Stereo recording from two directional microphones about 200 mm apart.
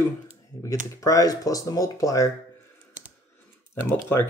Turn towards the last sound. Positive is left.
turn(degrees=10)  # may be behind; listen again after turning